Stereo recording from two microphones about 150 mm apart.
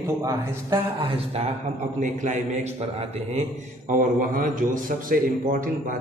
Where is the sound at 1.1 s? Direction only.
40° right (ahead or behind).